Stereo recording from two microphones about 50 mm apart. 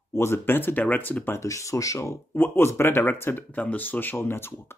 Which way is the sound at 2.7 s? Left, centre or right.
Left.